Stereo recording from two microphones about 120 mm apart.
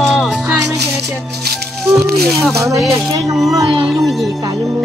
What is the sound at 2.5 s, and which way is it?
Speech, 25° right (ahead or behind).